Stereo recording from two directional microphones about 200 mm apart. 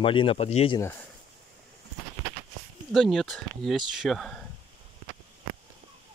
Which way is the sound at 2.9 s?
Centre (ahead or behind).